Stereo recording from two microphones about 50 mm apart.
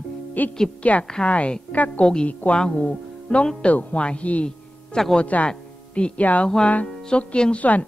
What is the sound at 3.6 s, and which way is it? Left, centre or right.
A woman's voice, left.